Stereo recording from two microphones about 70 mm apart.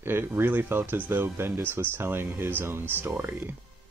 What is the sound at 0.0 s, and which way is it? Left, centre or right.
Speech, right.